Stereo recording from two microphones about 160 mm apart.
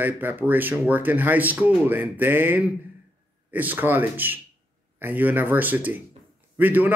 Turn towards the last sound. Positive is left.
turn(degrees=-10)  # may be behind; listen again after turning